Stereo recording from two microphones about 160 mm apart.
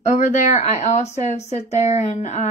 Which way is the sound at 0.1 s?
50° left (ahead or behind).